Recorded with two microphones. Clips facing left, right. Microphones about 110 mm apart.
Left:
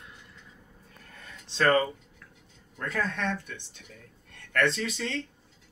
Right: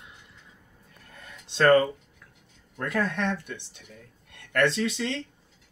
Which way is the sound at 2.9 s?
15° right (ahead or behind).